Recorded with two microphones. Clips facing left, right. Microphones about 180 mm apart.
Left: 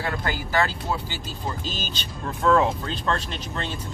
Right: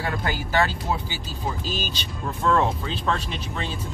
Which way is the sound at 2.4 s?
Centre (ahead or behind).